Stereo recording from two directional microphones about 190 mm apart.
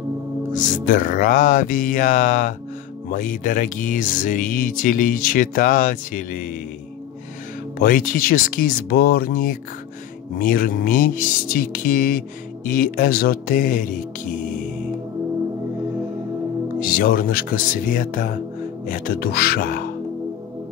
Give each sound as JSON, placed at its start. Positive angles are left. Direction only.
{"t": 0.5, "sound": "speech", "side_deg": 45}
{"t": 7.8, "sound": "speech", "side_deg": 50}
{"t": 16.8, "sound": "speech", "side_deg": 50}